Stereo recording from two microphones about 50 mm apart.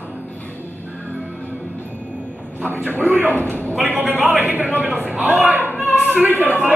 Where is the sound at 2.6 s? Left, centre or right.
Right.